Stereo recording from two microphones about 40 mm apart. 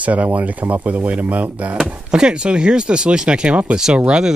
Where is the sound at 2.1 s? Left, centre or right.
Right.